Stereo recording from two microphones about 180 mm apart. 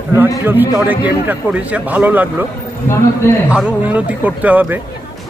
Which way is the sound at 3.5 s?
5° right (ahead or behind).